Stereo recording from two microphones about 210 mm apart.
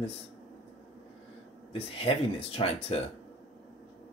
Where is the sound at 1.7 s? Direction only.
25° left (ahead or behind).